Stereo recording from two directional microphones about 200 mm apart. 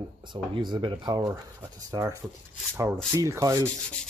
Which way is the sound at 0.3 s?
20° right (ahead or behind).